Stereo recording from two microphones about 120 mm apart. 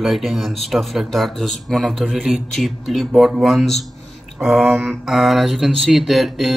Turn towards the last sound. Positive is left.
turn(degrees=0)  # may be behind; listen again after turning